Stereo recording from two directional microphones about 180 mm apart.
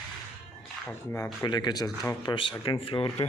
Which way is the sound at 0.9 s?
10° left (ahead or behind).